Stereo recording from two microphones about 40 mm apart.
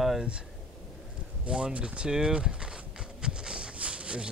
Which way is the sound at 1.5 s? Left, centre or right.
Right.